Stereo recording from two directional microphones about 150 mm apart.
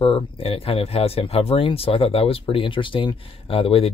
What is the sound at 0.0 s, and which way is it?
Speech, 40° left (ahead or behind).